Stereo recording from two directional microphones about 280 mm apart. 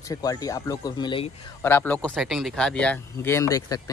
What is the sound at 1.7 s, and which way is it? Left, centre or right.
Speech, centre.